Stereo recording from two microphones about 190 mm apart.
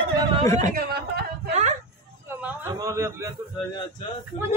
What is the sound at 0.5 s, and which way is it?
Speech, 45° right (ahead or behind).